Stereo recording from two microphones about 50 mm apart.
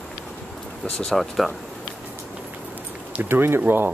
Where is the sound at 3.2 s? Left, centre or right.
Right.